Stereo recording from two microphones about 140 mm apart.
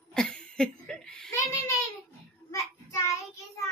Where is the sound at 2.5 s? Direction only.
20° left (ahead or behind).